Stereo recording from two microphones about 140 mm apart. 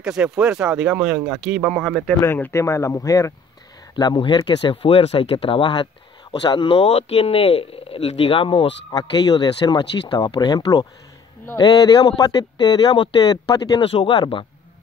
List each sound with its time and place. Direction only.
0.0 s speech: 5° right (ahead or behind)
2.1 s speech: 15° left (ahead or behind)
3.9 s speech: 35° left (ahead or behind)
8.9 s speech: 30° left (ahead or behind)